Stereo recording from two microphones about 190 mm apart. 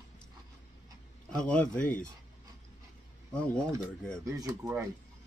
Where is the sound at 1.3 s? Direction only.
5° left (ahead or behind).